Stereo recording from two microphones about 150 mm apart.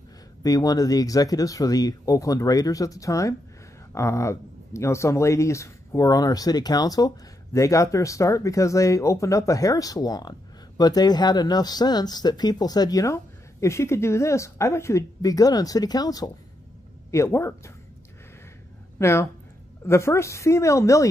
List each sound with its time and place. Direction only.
0.4 s speech: 25° left (ahead or behind)
18.9 s speech: 15° left (ahead or behind)